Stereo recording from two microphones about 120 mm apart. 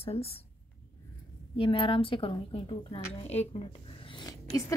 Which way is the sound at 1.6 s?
45° left (ahead or behind).